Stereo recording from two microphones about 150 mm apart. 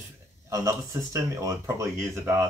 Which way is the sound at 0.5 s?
20° right (ahead or behind).